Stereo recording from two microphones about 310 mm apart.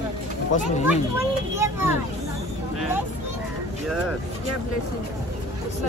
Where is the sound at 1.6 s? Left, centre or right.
Centre.